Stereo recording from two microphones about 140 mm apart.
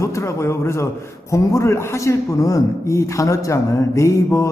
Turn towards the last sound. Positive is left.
turn(degrees=20)  # may be behind; listen again after turning